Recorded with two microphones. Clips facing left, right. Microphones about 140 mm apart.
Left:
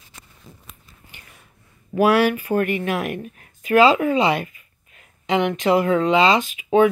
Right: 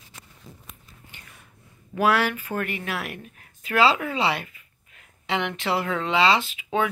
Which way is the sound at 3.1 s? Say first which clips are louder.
Left 9 dB; 45° left (ahead or behind).